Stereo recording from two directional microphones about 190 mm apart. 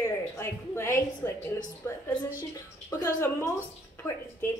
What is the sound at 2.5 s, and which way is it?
A woman's voice, 15° left (ahead or behind).